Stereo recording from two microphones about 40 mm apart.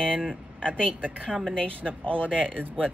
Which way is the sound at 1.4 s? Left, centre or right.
Left.